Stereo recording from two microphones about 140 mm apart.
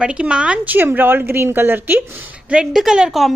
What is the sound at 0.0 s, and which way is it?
A woman's voice, 5° right (ahead or behind).